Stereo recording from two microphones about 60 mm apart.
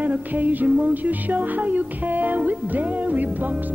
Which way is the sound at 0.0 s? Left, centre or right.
Right.